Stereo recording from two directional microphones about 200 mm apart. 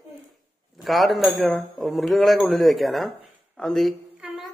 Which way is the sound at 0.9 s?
Centre (ahead or behind).